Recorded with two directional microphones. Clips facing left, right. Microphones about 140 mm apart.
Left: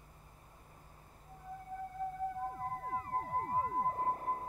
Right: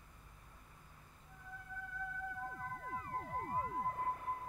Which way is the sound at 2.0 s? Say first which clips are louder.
Left 7 dB; 35° left (ahead or behind).